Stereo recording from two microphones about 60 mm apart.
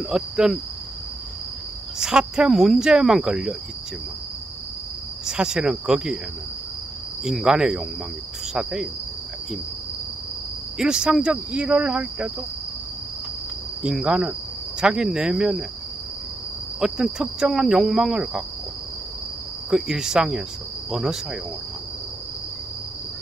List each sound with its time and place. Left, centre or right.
0.0 s cricket: centre
2.0 s cricket: centre
5.2 s cricket: centre
7.2 s cricket: centre
10.8 s cricket: centre
14.0 s cricket: centre
16.8 s cricket: centre
19.7 s cricket: centre